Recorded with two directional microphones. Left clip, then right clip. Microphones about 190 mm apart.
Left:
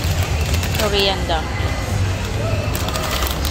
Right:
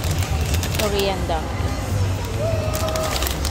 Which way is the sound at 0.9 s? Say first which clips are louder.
Left 6 dB; 15° right (ahead or behind).